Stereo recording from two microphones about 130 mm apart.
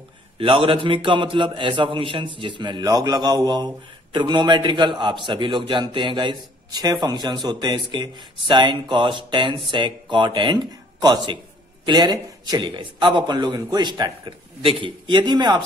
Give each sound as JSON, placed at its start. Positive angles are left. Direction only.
{"t": 0.4, "sound": "a man's voice", "side_deg": -45}